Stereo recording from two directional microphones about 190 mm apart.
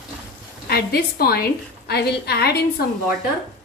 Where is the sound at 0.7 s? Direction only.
55° left (ahead or behind).